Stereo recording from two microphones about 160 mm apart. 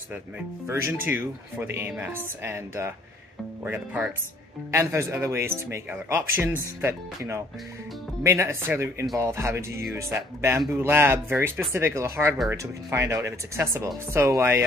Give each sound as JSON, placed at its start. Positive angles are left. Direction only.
{"t": 0.7, "sound": "speech", "side_deg": -15}